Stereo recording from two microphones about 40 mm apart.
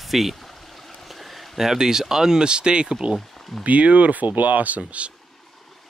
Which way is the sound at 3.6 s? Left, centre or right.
Right.